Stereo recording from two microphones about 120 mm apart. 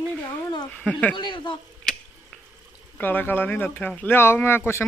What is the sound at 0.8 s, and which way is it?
Speech, 10° left (ahead or behind).